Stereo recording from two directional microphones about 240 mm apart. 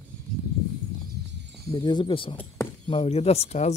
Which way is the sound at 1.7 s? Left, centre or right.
Centre.